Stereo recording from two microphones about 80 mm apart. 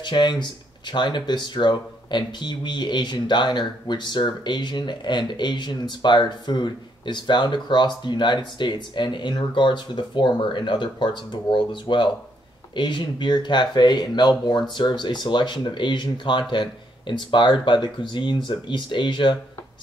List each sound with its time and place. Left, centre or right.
0.0 s speech: left
16.5 s speech: left